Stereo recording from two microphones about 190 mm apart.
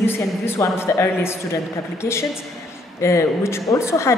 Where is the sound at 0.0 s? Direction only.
10° left (ahead or behind).